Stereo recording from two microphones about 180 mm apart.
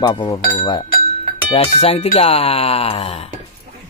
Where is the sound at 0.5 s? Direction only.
25° left (ahead or behind).